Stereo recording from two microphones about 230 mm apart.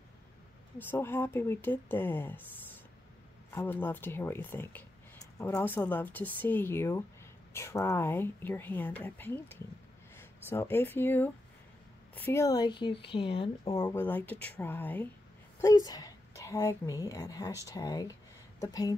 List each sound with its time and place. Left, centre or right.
0.7 s speech: centre
13.8 s speech: centre